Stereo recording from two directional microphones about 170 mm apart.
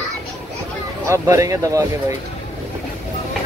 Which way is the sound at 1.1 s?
20° right (ahead or behind).